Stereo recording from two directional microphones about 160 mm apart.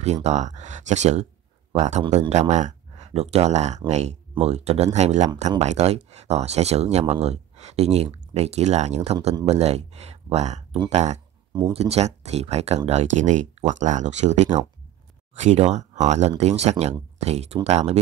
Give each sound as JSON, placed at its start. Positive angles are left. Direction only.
{"t": 0.0, "sound": "speech", "side_deg": -45}